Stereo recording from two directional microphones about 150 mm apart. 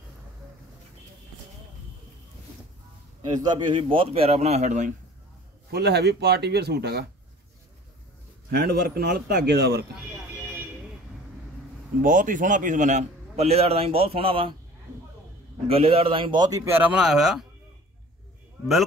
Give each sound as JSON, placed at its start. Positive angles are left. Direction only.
{"t": 3.3, "sound": "a man's voice", "side_deg": -25}
{"t": 5.7, "sound": "speech", "side_deg": -90}
{"t": 8.5, "sound": "speech", "side_deg": -90}
{"t": 12.0, "sound": "a man's voice", "side_deg": -60}
{"t": 15.7, "sound": "a man's voice", "side_deg": -40}